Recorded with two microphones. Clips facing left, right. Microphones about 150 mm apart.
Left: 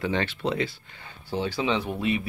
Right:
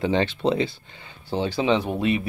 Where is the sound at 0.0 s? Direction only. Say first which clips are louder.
Right 5 dB; 25° right (ahead or behind).